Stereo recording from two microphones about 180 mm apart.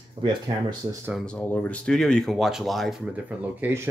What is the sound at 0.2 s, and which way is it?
Speech, 25° right (ahead or behind).